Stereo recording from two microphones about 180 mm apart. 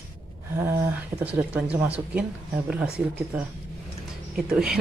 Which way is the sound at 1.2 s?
10° right (ahead or behind).